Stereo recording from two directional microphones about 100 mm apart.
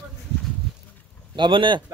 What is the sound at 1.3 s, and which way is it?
Speech, 55° right (ahead or behind).